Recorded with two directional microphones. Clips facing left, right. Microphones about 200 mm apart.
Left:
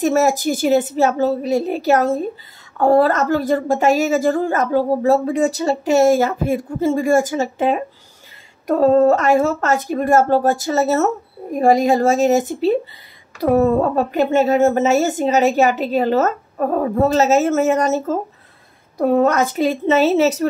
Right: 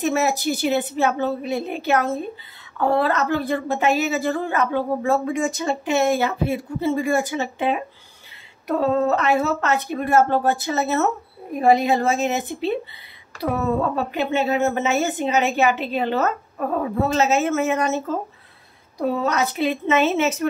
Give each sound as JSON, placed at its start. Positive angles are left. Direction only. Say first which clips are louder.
{"t": 0.0, "sound": "a woman's voice", "louder": "left 5 dB", "side_deg": 45}
{"t": 18.9, "sound": "a woman's voice", "louder": "left 7 dB", "side_deg": 55}